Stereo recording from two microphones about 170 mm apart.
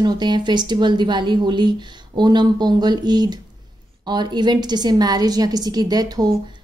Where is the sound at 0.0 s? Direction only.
25° right (ahead or behind).